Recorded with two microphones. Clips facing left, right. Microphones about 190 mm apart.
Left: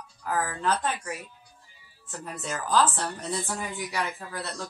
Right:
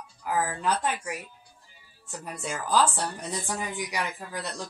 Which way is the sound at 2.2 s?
10° right (ahead or behind).